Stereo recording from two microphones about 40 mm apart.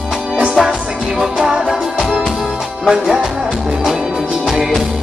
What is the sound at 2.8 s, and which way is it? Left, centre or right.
Music, centre.